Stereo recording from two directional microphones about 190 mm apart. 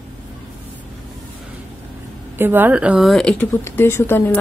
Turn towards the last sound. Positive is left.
turn(degrees=10)  # may be behind; listen again after turning